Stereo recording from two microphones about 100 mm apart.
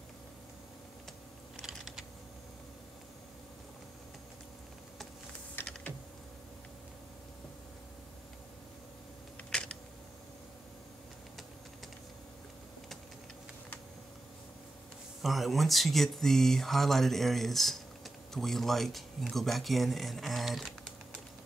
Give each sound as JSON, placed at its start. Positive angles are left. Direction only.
{"t": 1.6, "sound": "typing", "side_deg": 0}
{"t": 5.6, "sound": "typing", "side_deg": 20}
{"t": 9.5, "sound": "a sound", "side_deg": 5}
{"t": 15.2, "sound": "speech", "side_deg": 0}